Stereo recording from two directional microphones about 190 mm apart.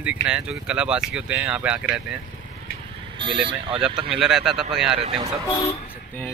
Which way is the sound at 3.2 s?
25° right (ahead or behind).